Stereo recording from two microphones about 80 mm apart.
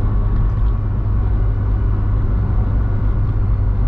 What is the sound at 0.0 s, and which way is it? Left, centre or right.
Vehicle, centre.